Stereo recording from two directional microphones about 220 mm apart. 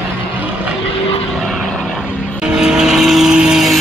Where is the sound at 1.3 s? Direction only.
Centre (ahead or behind).